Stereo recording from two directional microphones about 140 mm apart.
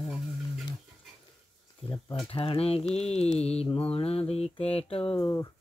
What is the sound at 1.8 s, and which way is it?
Speech, 5° left (ahead or behind).